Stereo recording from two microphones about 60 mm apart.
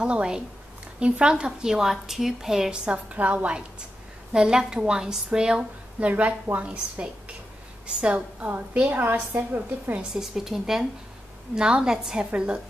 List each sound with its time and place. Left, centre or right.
0.0 s a woman's voice: centre
4.3 s a woman's voice: centre
5.9 s a woman's voice: right
10.1 s a woman's voice: centre